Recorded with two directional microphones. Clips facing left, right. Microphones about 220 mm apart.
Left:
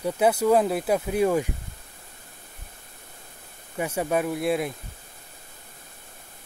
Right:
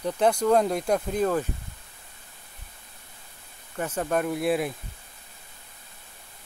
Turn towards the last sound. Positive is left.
turn(degrees=0)  # may be behind; listen again after turning